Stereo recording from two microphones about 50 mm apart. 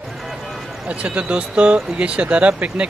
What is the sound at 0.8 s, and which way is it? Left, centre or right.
Speech, right.